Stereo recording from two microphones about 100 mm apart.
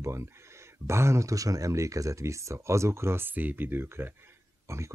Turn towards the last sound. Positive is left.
turn(degrees=-30)  # may be behind; listen again after turning